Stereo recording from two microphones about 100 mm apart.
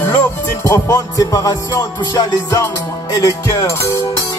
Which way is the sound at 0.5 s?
30° left (ahead or behind).